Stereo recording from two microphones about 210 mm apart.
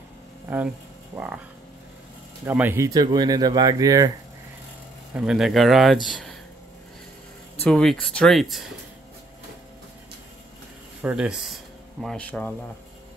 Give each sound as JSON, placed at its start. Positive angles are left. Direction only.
{"t": 1.1, "sound": "speech", "side_deg": -5}
{"t": 2.4, "sound": "speech", "side_deg": -10}
{"t": 5.1, "sound": "speech", "side_deg": 0}
{"t": 7.6, "sound": "speech", "side_deg": 5}
{"t": 11.0, "sound": "speech", "side_deg": -5}